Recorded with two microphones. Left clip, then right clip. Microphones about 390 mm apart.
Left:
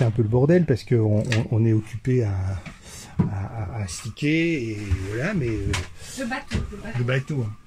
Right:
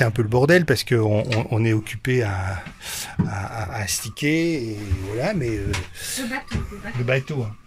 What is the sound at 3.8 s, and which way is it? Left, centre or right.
Speech, centre.